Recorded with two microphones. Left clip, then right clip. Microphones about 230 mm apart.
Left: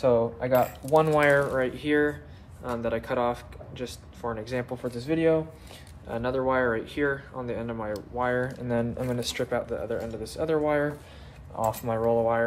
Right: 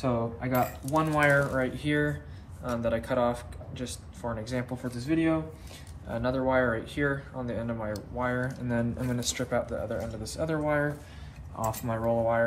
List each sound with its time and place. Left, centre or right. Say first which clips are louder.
0.0 s speech: left 7 dB; left